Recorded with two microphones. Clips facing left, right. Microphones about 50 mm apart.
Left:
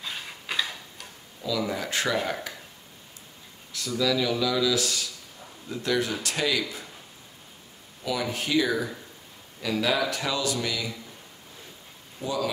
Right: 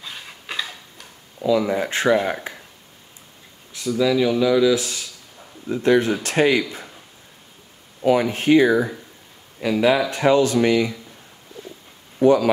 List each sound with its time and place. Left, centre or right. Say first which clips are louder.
0.0 s tick-tock: even; centre
1.4 s speech: right 9 dB; right
4.0 s speech: right 7 dB; right
8.0 s speech: right 11 dB; right
12.2 s speech: right 14 dB; right